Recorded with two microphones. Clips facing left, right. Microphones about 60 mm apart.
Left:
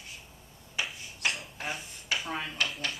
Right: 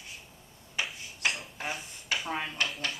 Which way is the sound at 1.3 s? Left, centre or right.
Centre.